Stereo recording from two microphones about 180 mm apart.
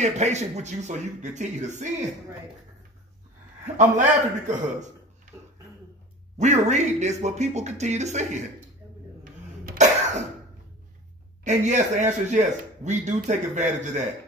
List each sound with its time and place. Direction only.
0.0 s speech: 40° right (ahead or behind)
3.7 s speech: 40° right (ahead or behind)
6.4 s speech: 40° right (ahead or behind)
11.4 s speech: 40° right (ahead or behind)